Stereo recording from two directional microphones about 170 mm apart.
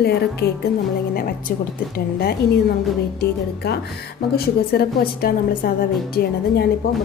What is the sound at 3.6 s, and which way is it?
A woman's voice, 70° left (ahead or behind).